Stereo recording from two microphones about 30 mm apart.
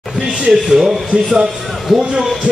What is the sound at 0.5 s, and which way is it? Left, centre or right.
Speech, centre.